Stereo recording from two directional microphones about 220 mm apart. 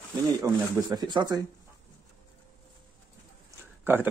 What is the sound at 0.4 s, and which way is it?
Speech, 15° right (ahead or behind).